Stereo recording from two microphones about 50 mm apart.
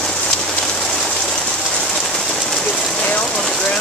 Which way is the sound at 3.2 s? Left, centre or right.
Centre.